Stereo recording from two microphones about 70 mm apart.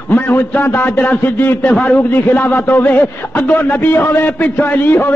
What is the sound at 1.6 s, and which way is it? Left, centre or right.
A man's voice, centre.